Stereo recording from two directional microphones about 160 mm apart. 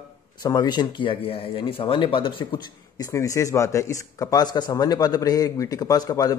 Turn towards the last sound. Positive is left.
turn(degrees=20)  # may be behind; listen again after turning